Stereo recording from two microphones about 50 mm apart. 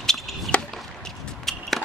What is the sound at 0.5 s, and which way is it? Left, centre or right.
Chop, left.